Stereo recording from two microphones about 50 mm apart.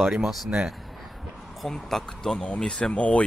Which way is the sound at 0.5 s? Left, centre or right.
Right.